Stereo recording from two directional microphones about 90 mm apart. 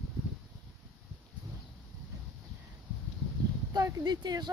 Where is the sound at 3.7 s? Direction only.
45° right (ahead or behind).